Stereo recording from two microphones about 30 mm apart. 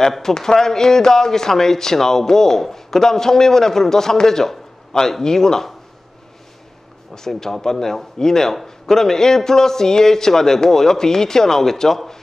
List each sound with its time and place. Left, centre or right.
0.2 s speech: centre
7.2 s speech: centre